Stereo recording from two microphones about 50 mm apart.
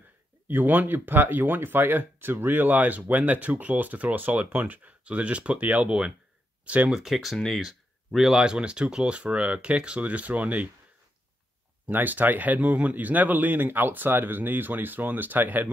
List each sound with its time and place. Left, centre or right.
0.5 s speech: right
6.9 s speech: centre
7.3 s speech: centre
7.6 s a sound: centre
8.4 s speech: centre
11.8 s speech: right